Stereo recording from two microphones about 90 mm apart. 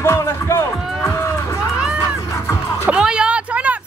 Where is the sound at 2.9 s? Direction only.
10° right (ahead or behind).